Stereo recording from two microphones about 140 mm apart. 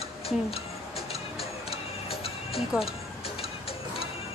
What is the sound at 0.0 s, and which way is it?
Music, 45° left (ahead or behind).